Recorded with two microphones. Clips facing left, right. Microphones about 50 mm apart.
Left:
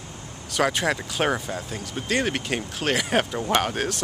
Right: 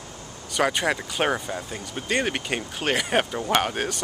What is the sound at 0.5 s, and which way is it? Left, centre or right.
Speech, centre.